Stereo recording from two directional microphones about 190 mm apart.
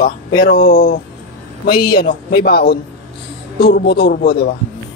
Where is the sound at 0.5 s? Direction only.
50° left (ahead or behind).